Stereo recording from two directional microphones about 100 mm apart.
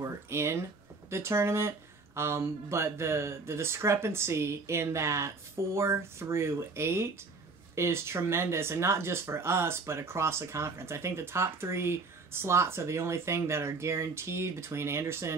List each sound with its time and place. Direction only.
0.0 s speech: 25° right (ahead or behind)